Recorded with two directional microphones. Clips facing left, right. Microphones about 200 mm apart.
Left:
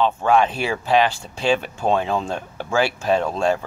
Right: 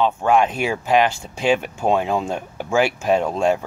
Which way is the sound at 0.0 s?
10° right (ahead or behind).